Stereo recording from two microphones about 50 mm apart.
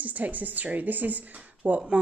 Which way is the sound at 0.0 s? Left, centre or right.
Right.